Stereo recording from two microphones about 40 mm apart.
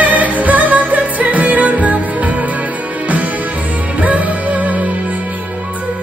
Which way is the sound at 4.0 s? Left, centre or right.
Right.